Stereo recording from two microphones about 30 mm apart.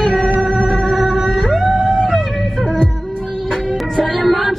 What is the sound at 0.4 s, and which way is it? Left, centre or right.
Music, left.